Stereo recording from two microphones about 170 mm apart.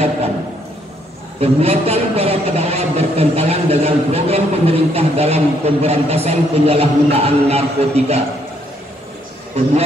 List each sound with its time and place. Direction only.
1.4 s a man's voice: 35° right (ahead or behind)